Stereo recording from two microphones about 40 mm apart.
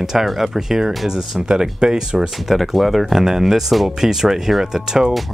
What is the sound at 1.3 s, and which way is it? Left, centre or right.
Speech, right.